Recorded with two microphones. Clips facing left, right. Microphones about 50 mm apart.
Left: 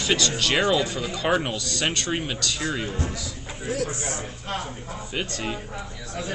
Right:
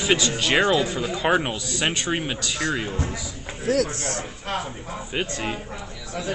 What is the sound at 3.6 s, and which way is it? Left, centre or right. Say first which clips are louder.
Speech: right 5 dB; right.